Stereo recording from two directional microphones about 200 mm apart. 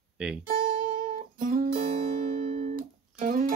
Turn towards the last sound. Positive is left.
turn(degrees=-45)  # may be behind; listen again after turning